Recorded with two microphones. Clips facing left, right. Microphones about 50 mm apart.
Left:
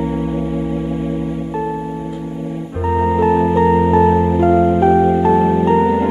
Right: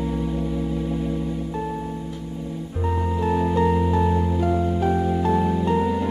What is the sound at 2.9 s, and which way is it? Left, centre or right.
Music, left.